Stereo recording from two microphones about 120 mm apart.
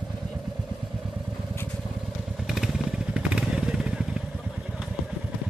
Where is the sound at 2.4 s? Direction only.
Centre (ahead or behind).